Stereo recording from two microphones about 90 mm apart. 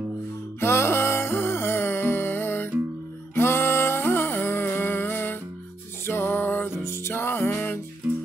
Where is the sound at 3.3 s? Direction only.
25° left (ahead or behind).